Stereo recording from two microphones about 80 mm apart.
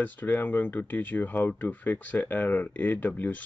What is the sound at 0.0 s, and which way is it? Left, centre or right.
Speech, left.